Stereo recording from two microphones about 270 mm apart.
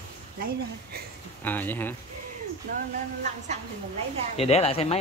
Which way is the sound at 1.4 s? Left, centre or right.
Centre.